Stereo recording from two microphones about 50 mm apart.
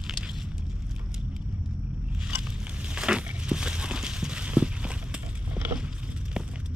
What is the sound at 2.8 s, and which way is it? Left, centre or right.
Crushing, centre.